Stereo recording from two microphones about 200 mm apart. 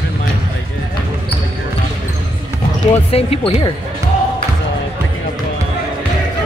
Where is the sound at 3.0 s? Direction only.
30° left (ahead or behind).